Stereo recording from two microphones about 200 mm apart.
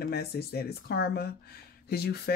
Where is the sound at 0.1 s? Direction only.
50° left (ahead or behind).